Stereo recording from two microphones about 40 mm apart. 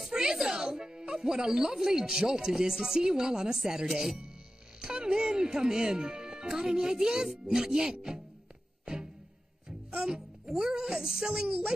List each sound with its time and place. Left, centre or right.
0.1 s speech: centre
8.8 s music: centre
9.7 s speech: right